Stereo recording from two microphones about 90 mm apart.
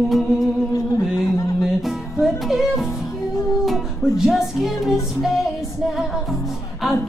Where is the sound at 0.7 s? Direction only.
40° left (ahead or behind).